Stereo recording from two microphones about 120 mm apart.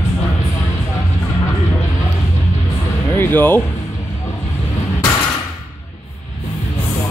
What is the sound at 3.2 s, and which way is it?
Speech, 15° left (ahead or behind).